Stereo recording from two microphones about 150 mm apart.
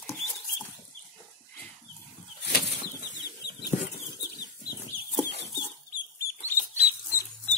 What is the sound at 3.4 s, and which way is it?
Bird flight, 90° left.